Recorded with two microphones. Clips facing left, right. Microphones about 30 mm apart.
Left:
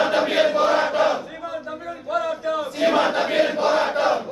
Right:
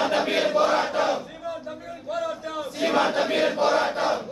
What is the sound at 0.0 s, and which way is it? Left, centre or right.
Chant, centre.